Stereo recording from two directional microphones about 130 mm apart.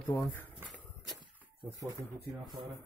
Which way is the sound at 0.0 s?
15° left (ahead or behind).